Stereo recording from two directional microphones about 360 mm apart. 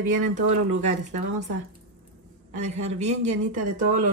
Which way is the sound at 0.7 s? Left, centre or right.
Centre.